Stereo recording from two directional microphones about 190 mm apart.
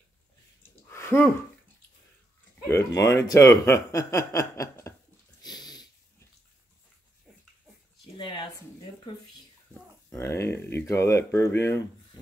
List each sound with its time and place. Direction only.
0.8 s a sound: 10° left (ahead or behind)
2.7 s speech: 15° left (ahead or behind)
5.4 s sniff: 20° left (ahead or behind)
8.2 s speech: 25° left (ahead or behind)
10.0 s speech: 15° left (ahead or behind)